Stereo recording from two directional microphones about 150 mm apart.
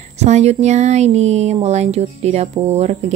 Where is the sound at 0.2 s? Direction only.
50° right (ahead or behind).